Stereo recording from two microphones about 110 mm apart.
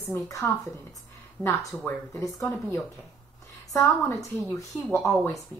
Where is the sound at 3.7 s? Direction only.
25° left (ahead or behind).